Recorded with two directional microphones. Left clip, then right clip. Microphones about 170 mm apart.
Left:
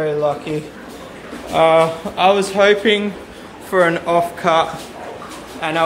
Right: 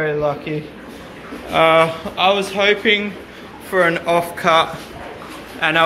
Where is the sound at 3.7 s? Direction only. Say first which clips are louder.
Left 1 dB; 25° left (ahead or behind); by 5.8 s 10° left (ahead or behind).